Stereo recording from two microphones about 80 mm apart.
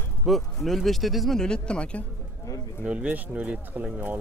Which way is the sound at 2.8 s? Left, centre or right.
Centre.